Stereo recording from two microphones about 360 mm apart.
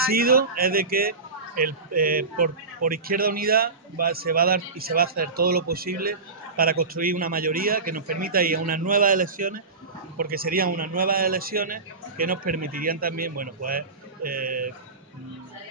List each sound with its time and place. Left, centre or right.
0.0 s speech: right